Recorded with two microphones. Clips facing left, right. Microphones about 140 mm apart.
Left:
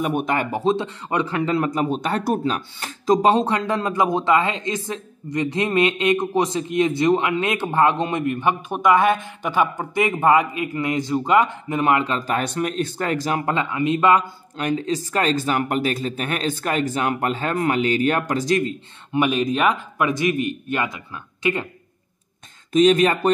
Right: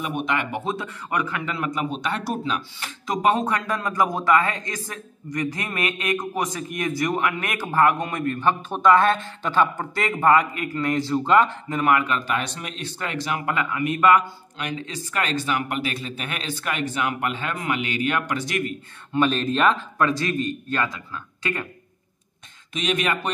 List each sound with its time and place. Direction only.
0.0 s a man's voice: 45° left (ahead or behind); by 12.4 s 30° left (ahead or behind)
12.4 s speech: 45° left (ahead or behind)
13.5 s a man's voice: 25° left (ahead or behind)
14.6 s speech: 40° left (ahead or behind)
19.1 s a man's voice: 15° left (ahead or behind)
22.7 s speech: 40° left (ahead or behind)